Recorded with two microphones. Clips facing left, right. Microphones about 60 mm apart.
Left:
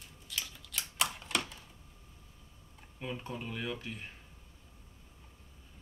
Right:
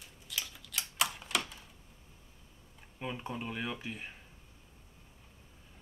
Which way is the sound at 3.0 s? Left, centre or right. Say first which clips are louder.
Right 1 dB; centre.